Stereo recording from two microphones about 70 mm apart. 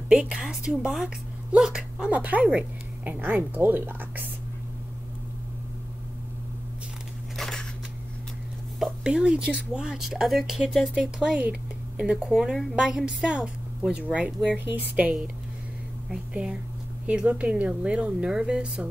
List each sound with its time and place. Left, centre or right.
0.1 s a woman's voice: centre; by 4.1 s right
7.3 s scissors: centre
9.0 s speech: centre
12.4 s a woman's voice: centre; by 15.1 s right
17.0 s speech: centre